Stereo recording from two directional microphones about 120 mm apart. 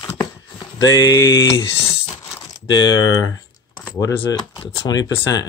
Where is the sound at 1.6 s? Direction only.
50° left (ahead or behind).